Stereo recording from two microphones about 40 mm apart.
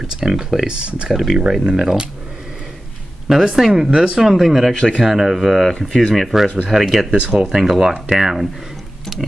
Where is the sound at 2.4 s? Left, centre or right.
Centre.